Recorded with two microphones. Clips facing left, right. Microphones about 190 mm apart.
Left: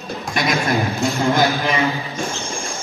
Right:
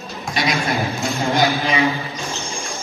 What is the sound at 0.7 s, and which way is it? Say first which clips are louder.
Speech: left 2 dB; centre (ahead or behind).